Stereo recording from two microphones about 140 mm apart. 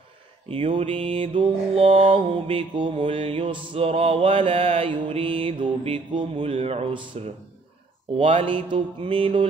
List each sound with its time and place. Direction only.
0.5 s mantra: 45° right (ahead or behind)